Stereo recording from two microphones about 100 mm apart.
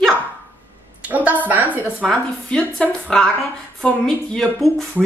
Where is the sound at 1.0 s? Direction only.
15° right (ahead or behind).